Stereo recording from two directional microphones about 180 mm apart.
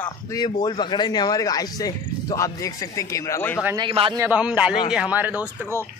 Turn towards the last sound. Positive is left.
turn(degrees=-10)  # may be behind; listen again after turning